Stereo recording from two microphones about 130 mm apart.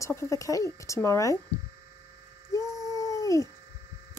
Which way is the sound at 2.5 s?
25° left (ahead or behind).